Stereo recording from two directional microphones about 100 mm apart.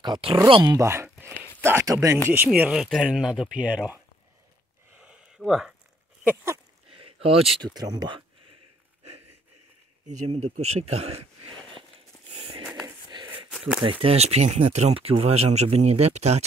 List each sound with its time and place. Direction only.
0.0 s speech: 55° right (ahead or behind)
0.7 s speech: 25° right (ahead or behind)
2.3 s speech: 20° right (ahead or behind)
2.7 s speech: 5° right (ahead or behind)
4.9 s a sound: 10° right (ahead or behind)
5.5 s speech: 5° right (ahead or behind)
6.9 s a sound: 65° right (ahead or behind)
7.6 s speech: 40° right (ahead or behind)
10.2 s speech: 90° right
12.8 s a sound: 50° right (ahead or behind)
13.5 s a sound: 5° right (ahead or behind)
13.8 s speech: 80° right